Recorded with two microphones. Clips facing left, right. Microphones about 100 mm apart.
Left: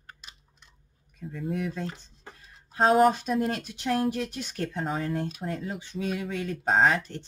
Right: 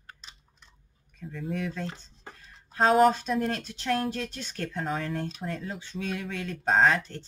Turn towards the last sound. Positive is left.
turn(degrees=15)  # may be behind; listen again after turning